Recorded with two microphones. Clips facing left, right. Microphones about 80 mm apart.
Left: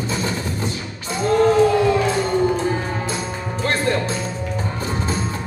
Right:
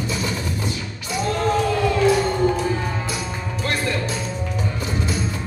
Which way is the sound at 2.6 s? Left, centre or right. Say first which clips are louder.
Left 1 dB; left.